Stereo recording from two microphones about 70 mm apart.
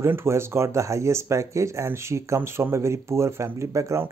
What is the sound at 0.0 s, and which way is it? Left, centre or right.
Speech, right.